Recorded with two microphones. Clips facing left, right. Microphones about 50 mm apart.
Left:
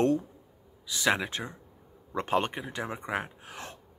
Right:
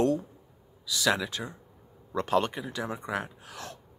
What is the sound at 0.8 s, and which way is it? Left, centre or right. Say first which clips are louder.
Speech: even; left.